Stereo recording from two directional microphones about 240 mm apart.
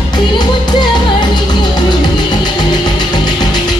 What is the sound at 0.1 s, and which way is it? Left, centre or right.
Music, centre.